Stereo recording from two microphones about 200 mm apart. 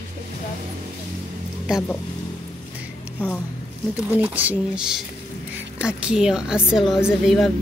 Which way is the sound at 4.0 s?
5° right (ahead or behind).